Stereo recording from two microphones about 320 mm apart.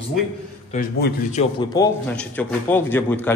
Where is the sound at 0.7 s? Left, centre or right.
Left.